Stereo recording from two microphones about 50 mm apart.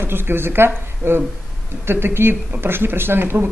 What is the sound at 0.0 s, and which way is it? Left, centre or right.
A woman's voice, right.